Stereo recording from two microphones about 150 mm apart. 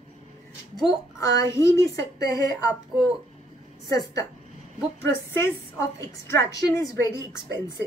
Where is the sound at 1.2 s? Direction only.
20° left (ahead or behind).